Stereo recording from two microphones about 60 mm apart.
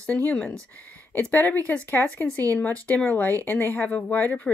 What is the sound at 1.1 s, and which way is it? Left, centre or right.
Speech, left.